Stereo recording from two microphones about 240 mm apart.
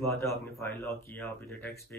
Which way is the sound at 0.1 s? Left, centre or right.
Centre.